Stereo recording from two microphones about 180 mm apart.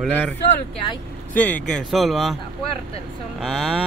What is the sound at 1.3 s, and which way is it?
Speech, 10° left (ahead or behind).